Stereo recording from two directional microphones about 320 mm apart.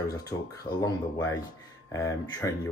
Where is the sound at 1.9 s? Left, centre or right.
Centre.